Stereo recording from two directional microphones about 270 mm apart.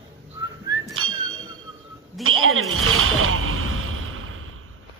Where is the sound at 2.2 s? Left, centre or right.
Right.